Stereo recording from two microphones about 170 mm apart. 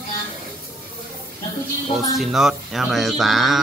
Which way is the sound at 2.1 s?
Centre (ahead or behind).